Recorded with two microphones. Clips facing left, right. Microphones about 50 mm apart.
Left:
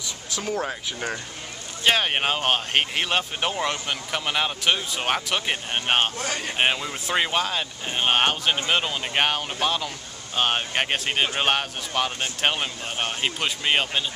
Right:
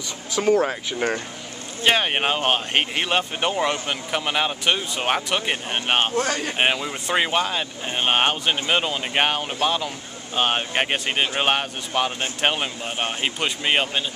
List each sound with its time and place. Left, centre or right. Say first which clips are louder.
0.4 s speech: right 9 dB; right
0.7 s speech: right 5 dB; right
1.9 s speech: right 2 dB; centre